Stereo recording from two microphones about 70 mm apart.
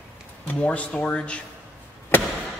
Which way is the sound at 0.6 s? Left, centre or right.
Left.